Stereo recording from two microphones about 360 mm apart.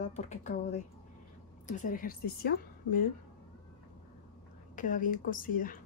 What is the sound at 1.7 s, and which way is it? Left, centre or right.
A woman's voice, left.